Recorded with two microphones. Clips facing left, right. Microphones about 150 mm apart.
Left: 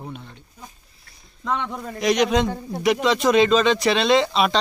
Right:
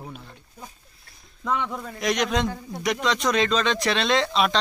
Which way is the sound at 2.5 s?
30° left (ahead or behind).